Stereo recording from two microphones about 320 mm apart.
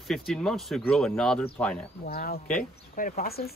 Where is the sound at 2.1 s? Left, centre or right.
Left.